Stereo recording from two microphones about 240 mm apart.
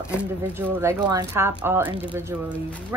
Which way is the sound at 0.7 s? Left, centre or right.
Centre.